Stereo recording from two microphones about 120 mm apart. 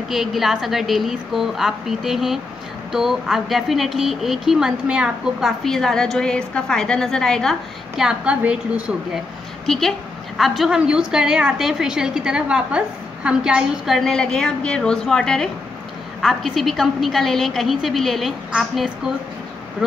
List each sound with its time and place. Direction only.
0.1 s speech: centre (ahead or behind)
9.7 s speech: centre (ahead or behind)